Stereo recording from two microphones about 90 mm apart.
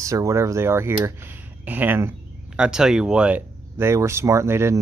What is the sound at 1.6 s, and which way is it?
Speech, 20° right (ahead or behind).